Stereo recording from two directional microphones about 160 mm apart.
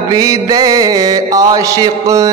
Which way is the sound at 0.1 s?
25° right (ahead or behind).